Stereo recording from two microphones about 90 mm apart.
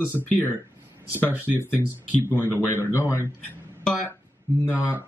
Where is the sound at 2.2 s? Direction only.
20° left (ahead or behind).